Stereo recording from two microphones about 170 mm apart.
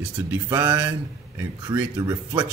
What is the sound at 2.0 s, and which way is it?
Speech, 25° right (ahead or behind).